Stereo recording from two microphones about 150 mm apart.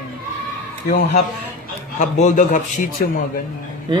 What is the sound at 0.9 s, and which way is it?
Speech, 75° left (ahead or behind).